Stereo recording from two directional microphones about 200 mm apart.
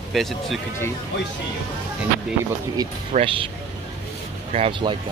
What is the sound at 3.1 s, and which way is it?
Speech, 25° right (ahead or behind).